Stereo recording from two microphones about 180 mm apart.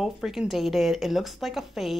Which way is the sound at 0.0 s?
Centre (ahead or behind).